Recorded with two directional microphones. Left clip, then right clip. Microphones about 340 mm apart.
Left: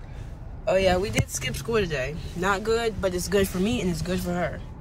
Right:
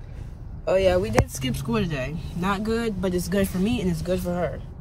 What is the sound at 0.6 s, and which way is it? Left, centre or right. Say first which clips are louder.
Speech: right 1 dB; right.